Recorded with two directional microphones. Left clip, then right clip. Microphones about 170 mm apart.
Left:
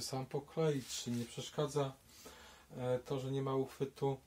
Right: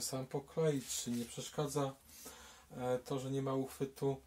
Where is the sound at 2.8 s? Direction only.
20° left (ahead or behind).